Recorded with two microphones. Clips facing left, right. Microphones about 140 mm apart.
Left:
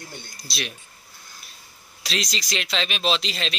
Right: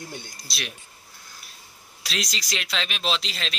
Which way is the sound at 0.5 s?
Centre (ahead or behind).